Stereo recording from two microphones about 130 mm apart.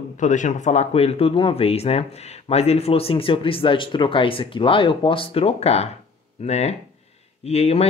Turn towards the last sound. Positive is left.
turn(degrees=55)  # may be behind; listen again after turning